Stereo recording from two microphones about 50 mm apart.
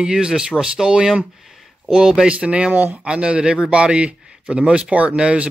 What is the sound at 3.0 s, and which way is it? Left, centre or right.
A man's voice, right.